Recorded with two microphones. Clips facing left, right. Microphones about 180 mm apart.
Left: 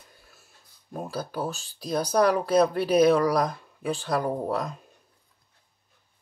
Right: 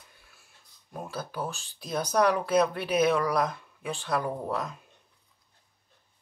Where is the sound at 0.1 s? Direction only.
40° left (ahead or behind).